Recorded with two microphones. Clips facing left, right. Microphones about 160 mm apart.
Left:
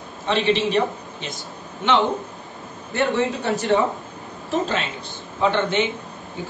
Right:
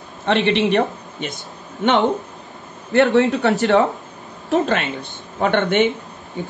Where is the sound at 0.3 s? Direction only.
60° right (ahead or behind).